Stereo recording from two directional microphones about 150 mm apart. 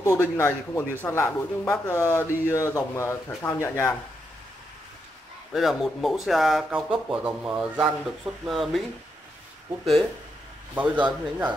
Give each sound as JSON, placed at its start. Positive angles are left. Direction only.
{"t": 0.0, "sound": "speech", "side_deg": 20}
{"t": 5.5, "sound": "speech", "side_deg": 0}
{"t": 10.7, "sound": "a man's voice", "side_deg": -10}